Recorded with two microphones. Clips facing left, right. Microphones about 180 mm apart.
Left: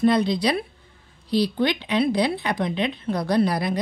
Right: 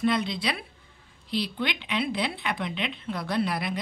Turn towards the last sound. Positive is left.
turn(degrees=40)  # may be behind; listen again after turning